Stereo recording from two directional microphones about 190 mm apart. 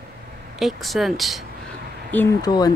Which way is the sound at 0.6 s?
Centre (ahead or behind).